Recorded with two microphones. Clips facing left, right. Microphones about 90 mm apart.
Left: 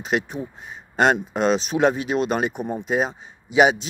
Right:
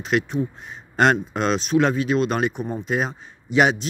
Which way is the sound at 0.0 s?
10° left (ahead or behind).